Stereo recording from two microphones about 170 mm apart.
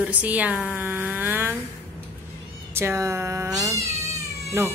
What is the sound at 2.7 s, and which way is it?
Speech, 15° right (ahead or behind).